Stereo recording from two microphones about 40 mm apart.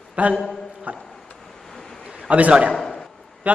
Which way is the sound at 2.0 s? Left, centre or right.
Centre.